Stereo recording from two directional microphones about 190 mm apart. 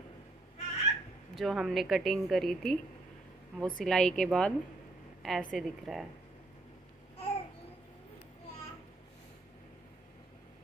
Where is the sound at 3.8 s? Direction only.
5° left (ahead or behind).